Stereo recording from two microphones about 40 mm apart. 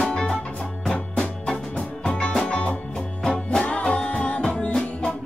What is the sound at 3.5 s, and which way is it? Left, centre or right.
Music, left.